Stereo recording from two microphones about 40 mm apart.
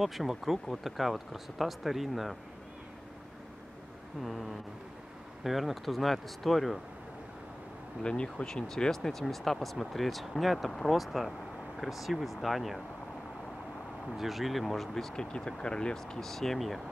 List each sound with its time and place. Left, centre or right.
0.0 s speech: centre
4.2 s speech: centre
8.0 s speech: left
8.6 s speech: centre
14.1 s speech: centre
15.3 s speech: left; by 16.8 s centre